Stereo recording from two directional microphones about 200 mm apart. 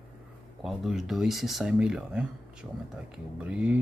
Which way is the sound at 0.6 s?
Centre (ahead or behind).